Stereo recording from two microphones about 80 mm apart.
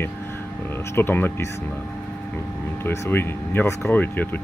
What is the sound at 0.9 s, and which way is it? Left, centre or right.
Speech, left.